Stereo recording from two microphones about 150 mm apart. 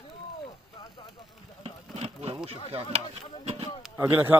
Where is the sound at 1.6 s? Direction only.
45° right (ahead or behind).